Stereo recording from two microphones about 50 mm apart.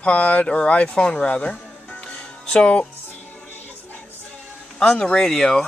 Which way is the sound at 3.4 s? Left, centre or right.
Left.